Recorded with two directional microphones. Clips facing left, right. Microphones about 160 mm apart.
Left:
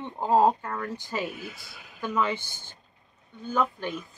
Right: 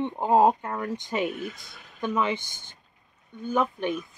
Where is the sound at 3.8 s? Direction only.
15° right (ahead or behind).